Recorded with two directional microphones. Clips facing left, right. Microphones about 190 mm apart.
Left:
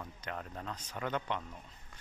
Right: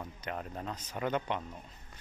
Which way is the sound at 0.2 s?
15° right (ahead or behind).